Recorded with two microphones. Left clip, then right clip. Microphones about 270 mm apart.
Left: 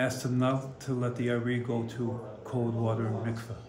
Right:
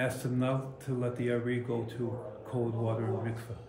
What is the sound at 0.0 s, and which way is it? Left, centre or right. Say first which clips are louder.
Speech: left 3 dB; centre.